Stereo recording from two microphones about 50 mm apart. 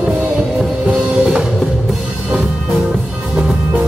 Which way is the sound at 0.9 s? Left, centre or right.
Centre.